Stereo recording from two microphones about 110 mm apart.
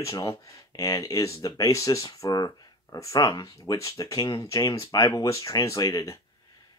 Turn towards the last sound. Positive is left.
turn(degrees=35)  # may be behind; listen again after turning